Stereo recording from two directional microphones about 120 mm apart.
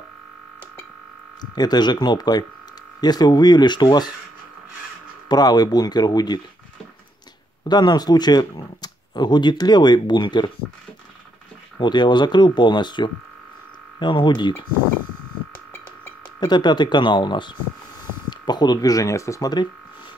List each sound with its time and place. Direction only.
1.4 s speech: 35° left (ahead or behind)
5.3 s speech: 35° left (ahead or behind)
7.6 s speech: 35° left (ahead or behind)
11.8 s speech: 40° left (ahead or behind)
16.3 s speech: 40° left (ahead or behind)